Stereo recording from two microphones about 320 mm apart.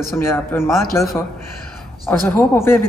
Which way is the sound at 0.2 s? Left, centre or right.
Centre.